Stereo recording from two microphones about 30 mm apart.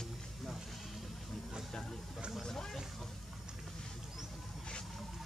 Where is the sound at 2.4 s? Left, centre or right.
Centre.